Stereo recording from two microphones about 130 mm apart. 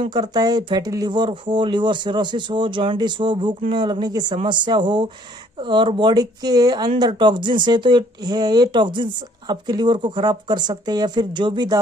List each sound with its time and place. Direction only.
0.0 s speech: 35° right (ahead or behind)